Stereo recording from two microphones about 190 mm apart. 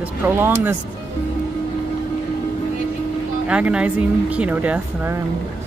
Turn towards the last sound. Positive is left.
turn(degrees=-10)  # may be behind; listen again after turning